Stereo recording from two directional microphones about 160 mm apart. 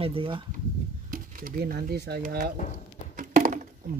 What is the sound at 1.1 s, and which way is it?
Speech, 60° right (ahead or behind).